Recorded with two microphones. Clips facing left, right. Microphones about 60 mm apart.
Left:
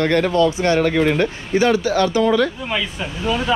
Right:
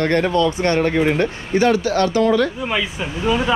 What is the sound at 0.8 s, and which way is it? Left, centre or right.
Speech, right.